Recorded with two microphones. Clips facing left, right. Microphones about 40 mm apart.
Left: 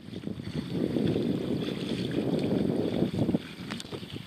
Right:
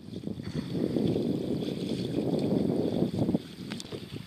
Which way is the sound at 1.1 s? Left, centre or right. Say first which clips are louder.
Even; left.